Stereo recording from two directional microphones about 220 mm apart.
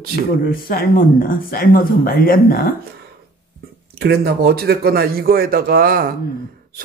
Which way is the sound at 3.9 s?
45° right (ahead or behind).